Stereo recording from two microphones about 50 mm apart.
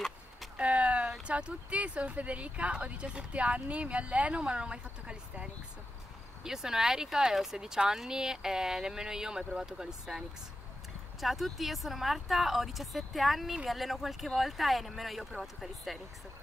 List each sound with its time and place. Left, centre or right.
0.6 s a sound: right
1.2 s speech: right
6.4 s speech: centre